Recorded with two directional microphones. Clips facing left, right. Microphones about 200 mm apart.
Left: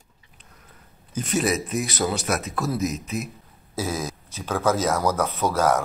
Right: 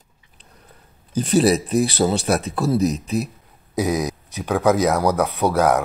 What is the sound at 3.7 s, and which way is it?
Speech, 15° right (ahead or behind).